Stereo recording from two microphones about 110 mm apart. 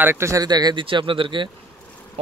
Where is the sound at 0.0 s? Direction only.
20° right (ahead or behind); by 0.8 s 40° right (ahead or behind).